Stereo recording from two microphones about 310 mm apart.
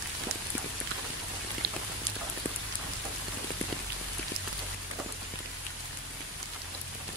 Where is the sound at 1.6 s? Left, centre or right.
Right.